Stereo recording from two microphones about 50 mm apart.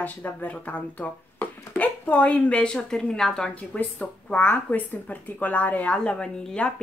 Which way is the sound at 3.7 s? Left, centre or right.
Left.